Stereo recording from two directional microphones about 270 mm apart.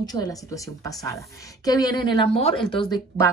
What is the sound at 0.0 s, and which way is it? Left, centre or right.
Speech, centre.